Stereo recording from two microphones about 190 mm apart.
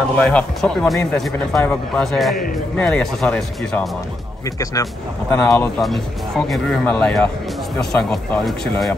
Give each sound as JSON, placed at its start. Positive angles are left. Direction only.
{"t": 0.2, "sound": "speech", "side_deg": 5}
{"t": 4.8, "sound": "speech", "side_deg": 20}
{"t": 5.8, "sound": "speech", "side_deg": 0}